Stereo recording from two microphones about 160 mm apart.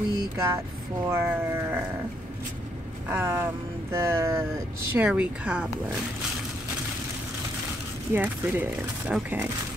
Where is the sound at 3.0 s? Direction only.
15° right (ahead or behind).